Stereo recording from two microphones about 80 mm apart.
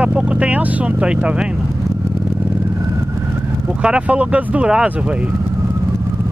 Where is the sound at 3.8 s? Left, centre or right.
Centre.